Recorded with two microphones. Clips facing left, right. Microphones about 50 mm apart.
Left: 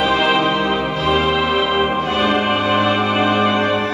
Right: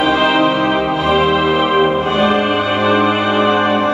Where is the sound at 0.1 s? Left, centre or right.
Centre.